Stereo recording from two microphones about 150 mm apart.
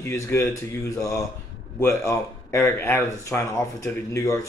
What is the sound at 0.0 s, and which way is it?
Speech, 15° left (ahead or behind).